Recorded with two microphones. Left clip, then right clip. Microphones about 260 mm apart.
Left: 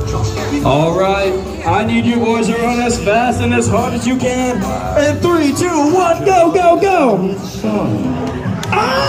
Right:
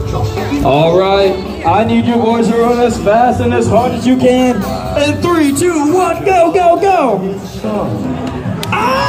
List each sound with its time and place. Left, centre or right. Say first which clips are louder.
0.7 s a sound: right 4 dB; right
2.8 s a man's voice: right 4 dB; right
5.9 s speech: even; left
8.7 s speech: right 1 dB; centre